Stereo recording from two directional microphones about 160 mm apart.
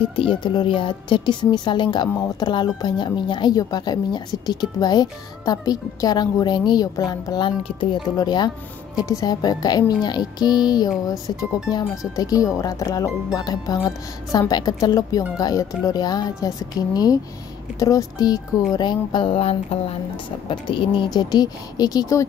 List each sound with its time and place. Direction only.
0.1 s a woman's voice: 30° left (ahead or behind)
12.2 s a woman's voice: 20° left (ahead or behind)